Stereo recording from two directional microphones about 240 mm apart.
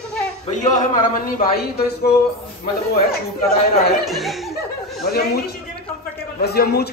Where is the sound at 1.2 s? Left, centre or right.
Left.